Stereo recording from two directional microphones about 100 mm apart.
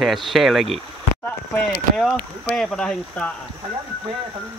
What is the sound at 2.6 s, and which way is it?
Speech, 10° left (ahead or behind).